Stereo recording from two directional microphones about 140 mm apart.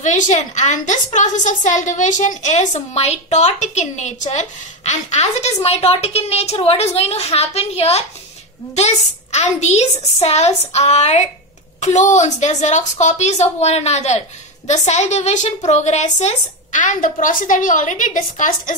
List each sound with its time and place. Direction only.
0.0 s a woman's voice: 60° left (ahead or behind)